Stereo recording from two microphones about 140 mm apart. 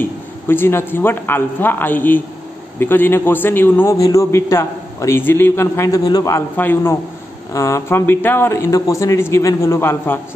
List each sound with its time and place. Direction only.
0.5 s a man's voice: 15° left (ahead or behind)
6.5 s a man's voice: 15° left (ahead or behind)